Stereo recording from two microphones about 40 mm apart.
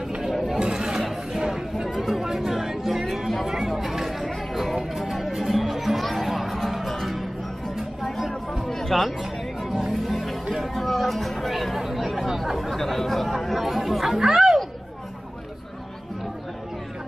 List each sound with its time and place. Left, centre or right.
0.3 s chatter: centre
0.6 s a sound: right
2.0 s music: centre
3.4 s chatter: centre
4.9 s music: centre
8.9 s music: centre
10.7 s chatter: centre